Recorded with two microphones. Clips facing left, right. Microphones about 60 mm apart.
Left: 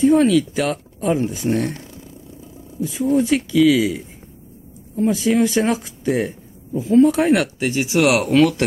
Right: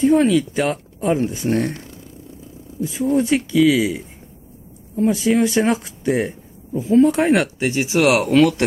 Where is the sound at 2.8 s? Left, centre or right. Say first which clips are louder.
Even; centre.